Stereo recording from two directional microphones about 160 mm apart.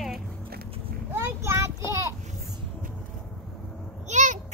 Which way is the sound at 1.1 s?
15° right (ahead or behind).